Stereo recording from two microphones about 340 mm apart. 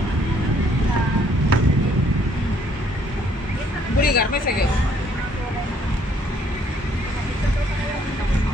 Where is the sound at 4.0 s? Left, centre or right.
Left.